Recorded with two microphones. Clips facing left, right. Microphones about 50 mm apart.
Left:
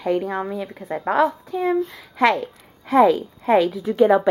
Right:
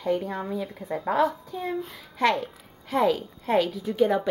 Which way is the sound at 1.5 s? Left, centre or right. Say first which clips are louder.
Left 9 dB; left.